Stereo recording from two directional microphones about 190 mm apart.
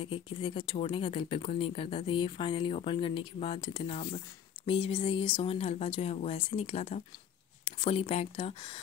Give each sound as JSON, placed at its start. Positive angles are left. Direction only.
{"t": 0.0, "sound": "speech", "side_deg": 30}